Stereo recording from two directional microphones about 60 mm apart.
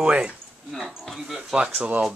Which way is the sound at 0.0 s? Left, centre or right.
Centre.